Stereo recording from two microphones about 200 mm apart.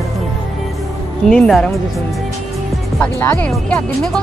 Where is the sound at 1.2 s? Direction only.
Centre (ahead or behind).